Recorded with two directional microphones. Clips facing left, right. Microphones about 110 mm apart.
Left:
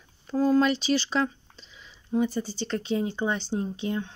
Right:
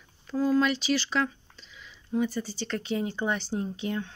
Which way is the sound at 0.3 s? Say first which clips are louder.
Left 3 dB; 35° left (ahead or behind).